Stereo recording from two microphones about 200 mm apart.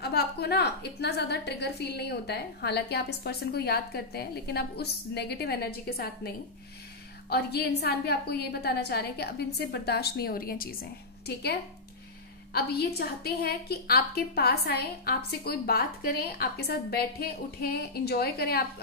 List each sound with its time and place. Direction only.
0.0 s a woman's voice: 55° left (ahead or behind)
12.5 s a woman's voice: 55° left (ahead or behind)